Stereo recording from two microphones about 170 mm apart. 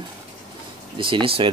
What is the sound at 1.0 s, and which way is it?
Speech, 30° right (ahead or behind).